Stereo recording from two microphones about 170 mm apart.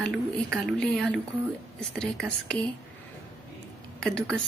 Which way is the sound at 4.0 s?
5° left (ahead or behind).